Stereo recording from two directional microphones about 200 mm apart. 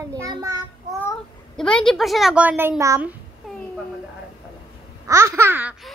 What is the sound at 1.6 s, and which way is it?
A woman's voice, 5° left (ahead or behind).